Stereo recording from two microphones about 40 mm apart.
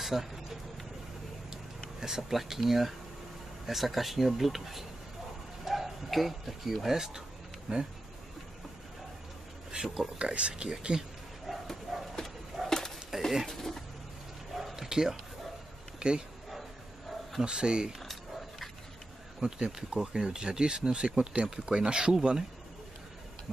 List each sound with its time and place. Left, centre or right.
0.0 s vehicle: centre
2.0 s speech: centre
7.7 s speech: right
9.7 s speech: centre
10.1 s speech: right
11.4 s bow-wow: centre
12.6 s a sound: centre
13.1 s a sound: centre
13.5 s a sound: centre
14.5 s bow-wow: centre
14.9 s speech: centre
17.4 s speech: right
19.4 s speech: centre